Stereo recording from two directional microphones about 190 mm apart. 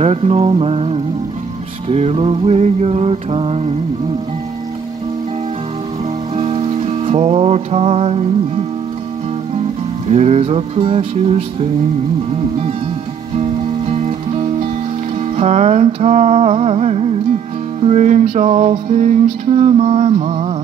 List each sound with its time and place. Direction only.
0.0 s mantra: 30° right (ahead or behind)
6.3 s music: 30° right (ahead or behind)
10.0 s mantra: 35° right (ahead or behind)
13.4 s music: 35° right (ahead or behind)
15.3 s mantra: 35° right (ahead or behind)